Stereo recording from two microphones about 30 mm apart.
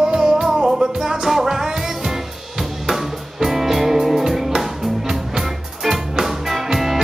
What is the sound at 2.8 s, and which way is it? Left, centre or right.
Music, centre.